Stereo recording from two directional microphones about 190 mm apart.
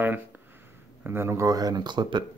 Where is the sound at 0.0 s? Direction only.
10° right (ahead or behind).